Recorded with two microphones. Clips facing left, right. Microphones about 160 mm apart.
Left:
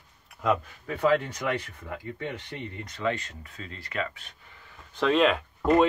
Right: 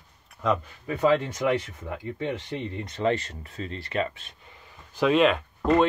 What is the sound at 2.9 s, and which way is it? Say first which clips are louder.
Speech: right 4 dB; 30° right (ahead or behind).